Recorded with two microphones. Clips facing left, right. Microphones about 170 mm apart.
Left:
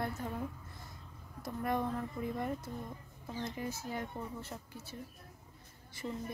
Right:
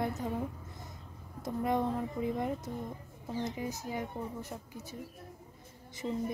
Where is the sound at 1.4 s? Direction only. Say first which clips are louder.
Right 4 dB; 20° right (ahead or behind).